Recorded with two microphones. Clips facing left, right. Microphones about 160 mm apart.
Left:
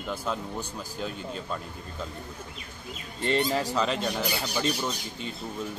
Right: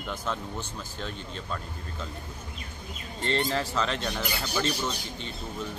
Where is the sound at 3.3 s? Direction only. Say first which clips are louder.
Left 2 dB; 10° left (ahead or behind).